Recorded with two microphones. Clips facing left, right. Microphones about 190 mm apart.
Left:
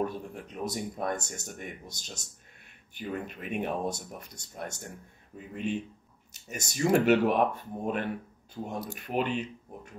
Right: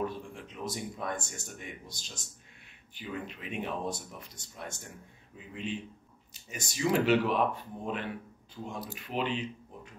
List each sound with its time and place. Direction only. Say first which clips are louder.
0.0 s speech: left 3 dB; 40° left (ahead or behind)